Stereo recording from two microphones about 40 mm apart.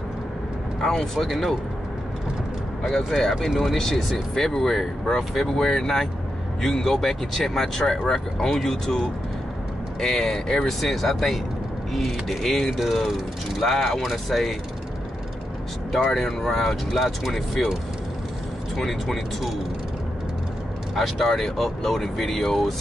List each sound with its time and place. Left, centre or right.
0.7 s speech: centre
3.2 s speech: centre
12.7 s speech: centre
16.1 s speech: centre
18.8 s speech: centre
20.9 s speech: centre